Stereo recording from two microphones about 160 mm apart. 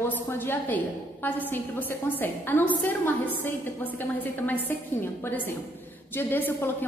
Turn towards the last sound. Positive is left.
turn(degrees=10)  # may be behind; listen again after turning